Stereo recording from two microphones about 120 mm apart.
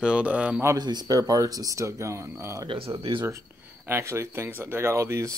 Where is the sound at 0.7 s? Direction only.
35° right (ahead or behind).